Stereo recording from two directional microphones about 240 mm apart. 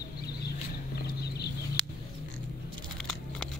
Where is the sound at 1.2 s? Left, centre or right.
Left.